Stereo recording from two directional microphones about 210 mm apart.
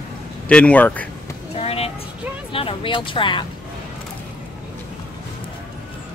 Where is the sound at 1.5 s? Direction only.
30° left (ahead or behind).